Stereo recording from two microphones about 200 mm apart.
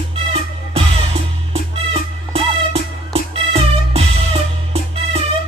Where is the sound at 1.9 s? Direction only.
30° right (ahead or behind).